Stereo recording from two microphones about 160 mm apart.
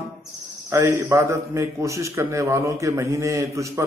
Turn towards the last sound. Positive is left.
turn(degrees=-20)  # may be behind; listen again after turning